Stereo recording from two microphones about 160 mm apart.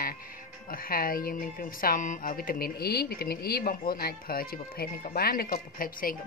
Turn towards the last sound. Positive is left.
turn(degrees=60)  # may be behind; listen again after turning